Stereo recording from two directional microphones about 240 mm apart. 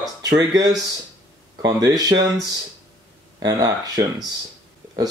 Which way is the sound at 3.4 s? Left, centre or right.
Centre.